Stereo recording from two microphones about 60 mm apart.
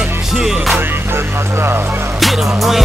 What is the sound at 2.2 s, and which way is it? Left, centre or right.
Music, centre.